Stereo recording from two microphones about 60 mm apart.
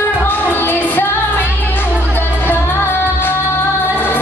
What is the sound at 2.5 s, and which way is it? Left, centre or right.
Music, left.